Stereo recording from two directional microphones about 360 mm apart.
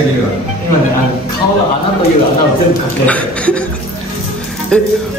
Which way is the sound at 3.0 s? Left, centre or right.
Centre.